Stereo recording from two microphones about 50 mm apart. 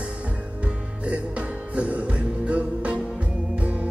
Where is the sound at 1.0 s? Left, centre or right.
Right.